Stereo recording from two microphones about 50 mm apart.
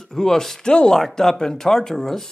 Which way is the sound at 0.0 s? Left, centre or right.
Centre.